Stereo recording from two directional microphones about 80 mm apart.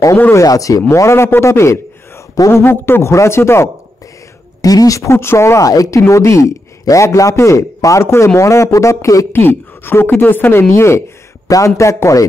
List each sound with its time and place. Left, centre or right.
0.3 s speech: left
2.6 s speech: left
4.6 s speech: left
9.3 s a woman's voice: left